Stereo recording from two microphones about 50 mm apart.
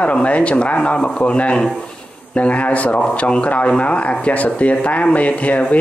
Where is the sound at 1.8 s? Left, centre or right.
Left.